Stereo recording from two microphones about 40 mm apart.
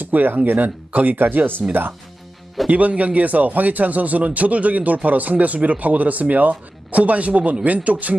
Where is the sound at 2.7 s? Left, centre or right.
Right.